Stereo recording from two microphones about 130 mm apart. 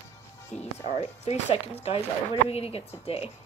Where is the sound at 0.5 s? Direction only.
60° left (ahead or behind).